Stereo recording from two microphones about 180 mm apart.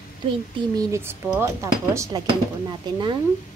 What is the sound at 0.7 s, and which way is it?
Speech, 15° right (ahead or behind).